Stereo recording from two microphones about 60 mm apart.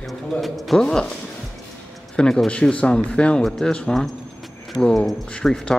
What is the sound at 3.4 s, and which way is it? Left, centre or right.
Speech, centre.